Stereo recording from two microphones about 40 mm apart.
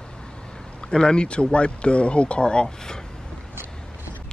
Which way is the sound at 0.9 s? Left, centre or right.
Left.